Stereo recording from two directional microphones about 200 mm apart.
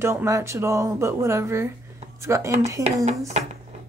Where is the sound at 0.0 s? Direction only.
15° right (ahead or behind).